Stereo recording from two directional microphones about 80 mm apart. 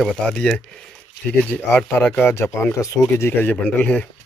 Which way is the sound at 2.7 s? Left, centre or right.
Left.